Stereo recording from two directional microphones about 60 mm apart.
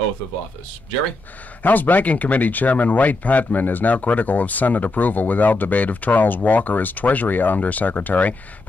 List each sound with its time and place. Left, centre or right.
1.6 s speech: left